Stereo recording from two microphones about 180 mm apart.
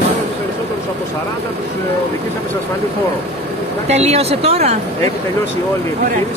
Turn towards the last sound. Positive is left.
turn(degrees=-35)  # may be behind; listen again after turning